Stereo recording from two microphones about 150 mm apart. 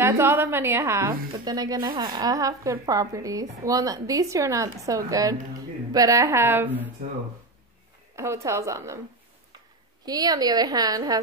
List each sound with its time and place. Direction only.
0.0 s a woman's voice: 15° right (ahead or behind)
8.2 s speech: 20° right (ahead or behind)
10.0 s speech: 25° right (ahead or behind)